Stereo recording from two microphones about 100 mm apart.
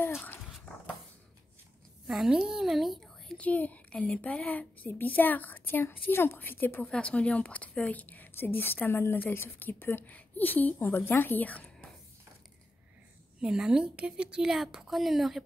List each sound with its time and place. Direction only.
0.0 s dog: 20° left (ahead or behind)
2.0 s a woman's voice: 5° right (ahead or behind)
3.3 s a woman's voice: 15° left (ahead or behind)
13.4 s a woman's voice: 5° right (ahead or behind)